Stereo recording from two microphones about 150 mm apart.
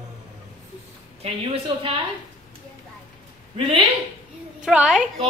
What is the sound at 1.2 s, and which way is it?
Speech, 40° right (ahead or behind).